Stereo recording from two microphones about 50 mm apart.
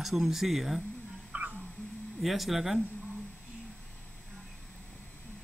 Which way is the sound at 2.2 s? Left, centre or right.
Centre.